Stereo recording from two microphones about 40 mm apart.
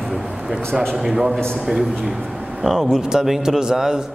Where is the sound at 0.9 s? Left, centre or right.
Centre.